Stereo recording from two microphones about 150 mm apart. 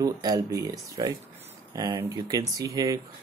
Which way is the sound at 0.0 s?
25° right (ahead or behind).